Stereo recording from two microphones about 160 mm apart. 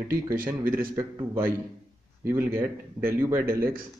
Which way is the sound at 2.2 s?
15° right (ahead or behind).